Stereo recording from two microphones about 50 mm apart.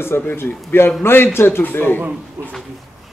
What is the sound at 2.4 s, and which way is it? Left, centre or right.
Speech, right.